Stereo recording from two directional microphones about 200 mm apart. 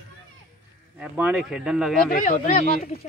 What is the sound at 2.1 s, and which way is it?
Speech, 40° left (ahead or behind).